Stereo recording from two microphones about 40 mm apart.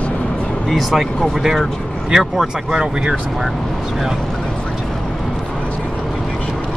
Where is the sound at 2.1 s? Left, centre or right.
Centre.